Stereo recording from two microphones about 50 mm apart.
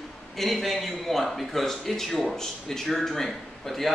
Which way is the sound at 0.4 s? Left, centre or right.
Centre.